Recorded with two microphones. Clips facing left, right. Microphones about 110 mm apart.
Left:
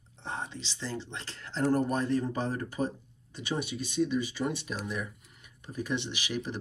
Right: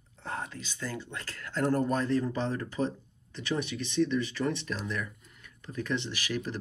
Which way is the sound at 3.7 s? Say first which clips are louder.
Right 1 dB; 15° left (ahead or behind).